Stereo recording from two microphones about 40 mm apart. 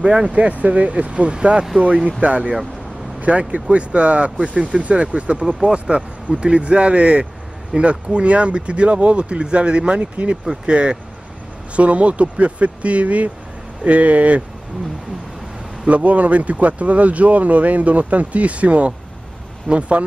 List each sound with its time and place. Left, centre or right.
0.0 s speech: centre
0.3 s speech: right
10.3 s speech: centre
10.7 s speech: right
15.8 s speech: right